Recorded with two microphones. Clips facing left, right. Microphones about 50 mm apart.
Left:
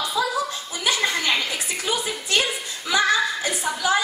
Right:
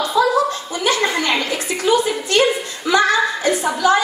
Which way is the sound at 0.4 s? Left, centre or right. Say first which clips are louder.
Right 8 dB; right.